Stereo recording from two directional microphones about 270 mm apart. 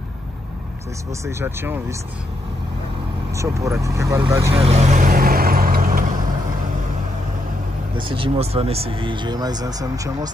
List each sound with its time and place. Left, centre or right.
1.2 s speech: centre
3.3 s speech: centre
4.6 s vehicle: right
8.1 s speech: right